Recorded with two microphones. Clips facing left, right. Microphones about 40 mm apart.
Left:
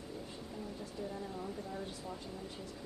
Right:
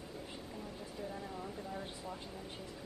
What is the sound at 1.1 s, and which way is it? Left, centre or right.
Speech, centre.